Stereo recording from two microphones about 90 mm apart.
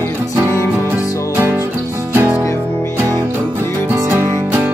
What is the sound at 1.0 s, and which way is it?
Music, 35° left (ahead or behind).